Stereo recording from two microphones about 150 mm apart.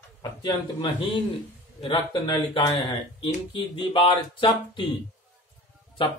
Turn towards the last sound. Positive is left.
turn(degrees=35)  # may be behind; listen again after turning